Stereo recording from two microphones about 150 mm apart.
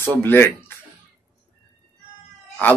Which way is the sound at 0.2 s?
15° left (ahead or behind).